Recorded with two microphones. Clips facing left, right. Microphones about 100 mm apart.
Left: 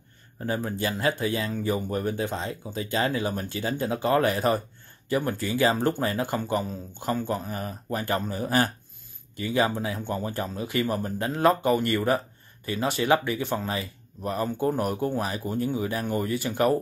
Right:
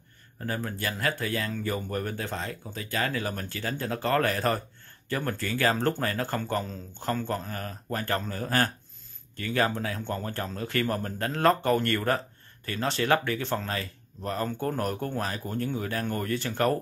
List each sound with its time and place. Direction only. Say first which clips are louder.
0.4 s speech: left 4 dB; 20° left (ahead or behind)